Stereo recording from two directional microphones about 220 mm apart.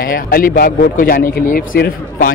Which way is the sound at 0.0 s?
40° left (ahead or behind).